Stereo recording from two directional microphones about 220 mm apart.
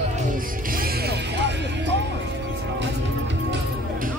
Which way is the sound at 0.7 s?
45° right (ahead or behind).